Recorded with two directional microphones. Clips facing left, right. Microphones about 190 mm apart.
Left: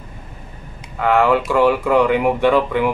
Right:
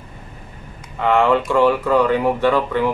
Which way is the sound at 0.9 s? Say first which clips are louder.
Left 1 dB; 5° left (ahead or behind).